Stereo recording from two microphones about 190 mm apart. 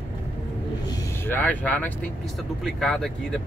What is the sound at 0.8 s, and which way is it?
Speech, 15° left (ahead or behind).